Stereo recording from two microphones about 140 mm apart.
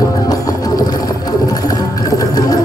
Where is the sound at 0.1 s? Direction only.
25° left (ahead or behind).